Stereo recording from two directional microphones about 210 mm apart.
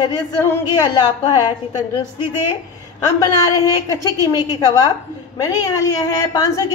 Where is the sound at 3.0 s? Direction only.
15° left (ahead or behind).